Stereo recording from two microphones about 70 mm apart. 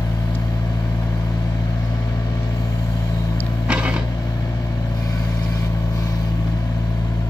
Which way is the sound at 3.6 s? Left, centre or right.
Centre.